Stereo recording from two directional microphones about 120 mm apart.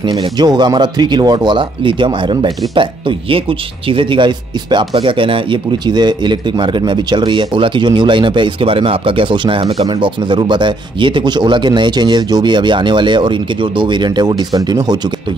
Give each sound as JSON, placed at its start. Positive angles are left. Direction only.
{"t": 0.0, "sound": "speech", "side_deg": -40}